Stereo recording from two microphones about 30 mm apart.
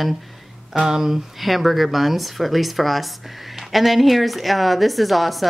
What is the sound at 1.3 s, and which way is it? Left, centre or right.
A woman's voice, centre.